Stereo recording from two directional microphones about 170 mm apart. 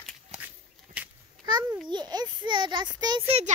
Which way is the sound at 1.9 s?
25° right (ahead or behind).